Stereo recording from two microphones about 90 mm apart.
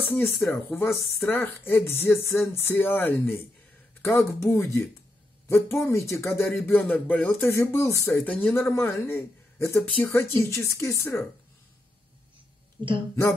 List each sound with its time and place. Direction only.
0.1 s a man's voice: 25° left (ahead or behind)
7.5 s a man's voice: 30° left (ahead or behind)
8.2 s speech: 15° left (ahead or behind)
8.6 s a man's voice: 30° left (ahead or behind)